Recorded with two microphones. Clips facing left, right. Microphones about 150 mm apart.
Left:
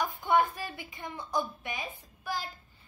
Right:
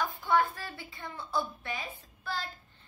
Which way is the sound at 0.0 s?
20° left (ahead or behind).